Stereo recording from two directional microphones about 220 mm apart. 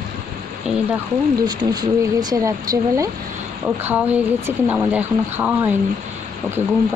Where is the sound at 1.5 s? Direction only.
15° right (ahead or behind).